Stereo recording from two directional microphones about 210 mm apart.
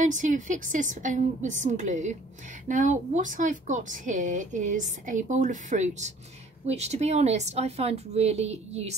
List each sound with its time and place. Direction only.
0.0 s speech: 35° right (ahead or behind)